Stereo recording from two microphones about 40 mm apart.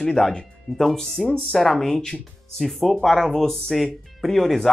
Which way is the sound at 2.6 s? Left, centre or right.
Centre.